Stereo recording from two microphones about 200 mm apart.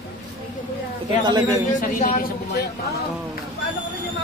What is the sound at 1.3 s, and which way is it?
Speech, 20° right (ahead or behind).